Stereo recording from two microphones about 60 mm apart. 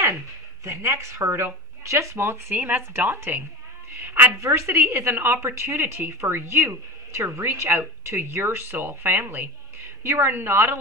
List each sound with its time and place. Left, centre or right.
0.7 s speech: right
2.5 s speech: right
4.4 s speech: right
5.1 s speech: right